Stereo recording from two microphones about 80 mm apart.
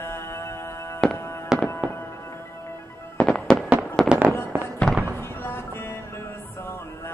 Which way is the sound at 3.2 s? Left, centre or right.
Centre.